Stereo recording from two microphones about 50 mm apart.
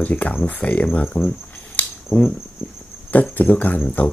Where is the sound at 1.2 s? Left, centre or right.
Left.